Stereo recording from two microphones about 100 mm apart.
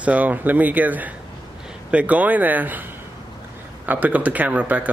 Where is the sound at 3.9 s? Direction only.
15° right (ahead or behind).